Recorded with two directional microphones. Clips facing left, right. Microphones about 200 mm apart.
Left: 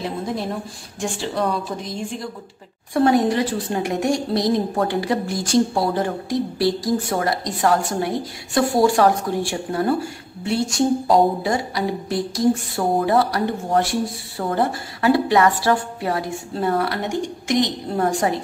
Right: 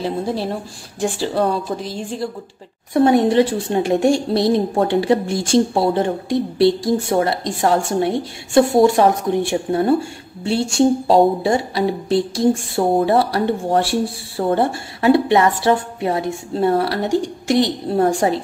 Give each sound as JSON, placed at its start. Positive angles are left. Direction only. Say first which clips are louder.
{"t": 0.0, "sound": "a woman's voice", "louder": "right 4 dB", "side_deg": -30}